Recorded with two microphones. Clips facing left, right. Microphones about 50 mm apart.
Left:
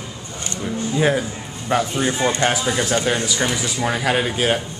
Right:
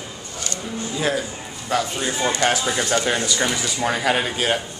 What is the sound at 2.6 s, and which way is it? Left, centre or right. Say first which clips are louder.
Speech: left 1 dB; centre.